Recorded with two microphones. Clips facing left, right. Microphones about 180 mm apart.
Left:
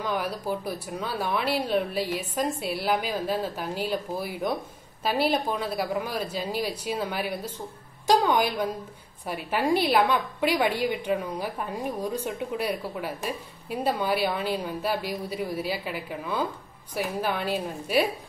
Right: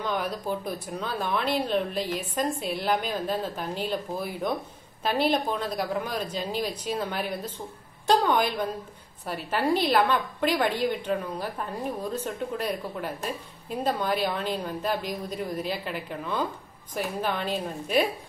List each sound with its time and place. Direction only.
0.0 s a woman's voice: 5° left (ahead or behind)